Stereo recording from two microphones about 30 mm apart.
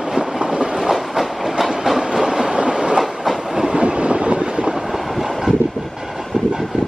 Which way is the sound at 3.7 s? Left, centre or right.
Right.